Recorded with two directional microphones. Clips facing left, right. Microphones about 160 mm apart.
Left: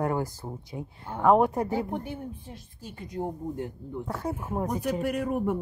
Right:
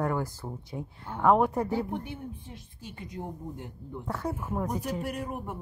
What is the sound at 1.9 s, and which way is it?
Speech, 40° left (ahead or behind).